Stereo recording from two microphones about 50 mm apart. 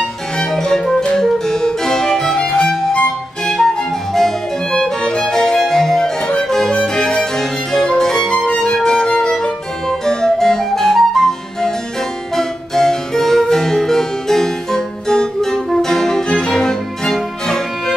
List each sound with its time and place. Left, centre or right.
0.4 s music: centre
12.4 s harpsichord: centre